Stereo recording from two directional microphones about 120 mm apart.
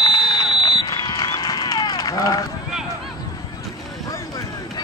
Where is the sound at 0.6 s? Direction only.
35° left (ahead or behind).